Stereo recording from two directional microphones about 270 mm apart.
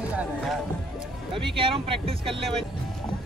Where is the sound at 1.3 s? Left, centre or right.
Centre.